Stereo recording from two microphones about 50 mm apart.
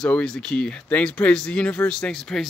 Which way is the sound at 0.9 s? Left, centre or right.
Left.